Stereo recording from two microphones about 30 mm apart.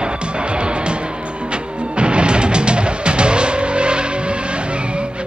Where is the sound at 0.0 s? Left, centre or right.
Right.